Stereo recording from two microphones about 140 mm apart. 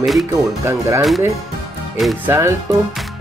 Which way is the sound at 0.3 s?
20° right (ahead or behind).